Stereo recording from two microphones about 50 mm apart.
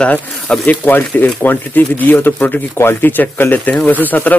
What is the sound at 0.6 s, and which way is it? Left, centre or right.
Speech, left.